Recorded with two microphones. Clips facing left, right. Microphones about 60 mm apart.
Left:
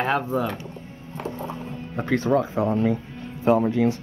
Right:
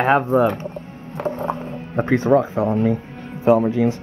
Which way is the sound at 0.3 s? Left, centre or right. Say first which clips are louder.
Right 8 dB; right.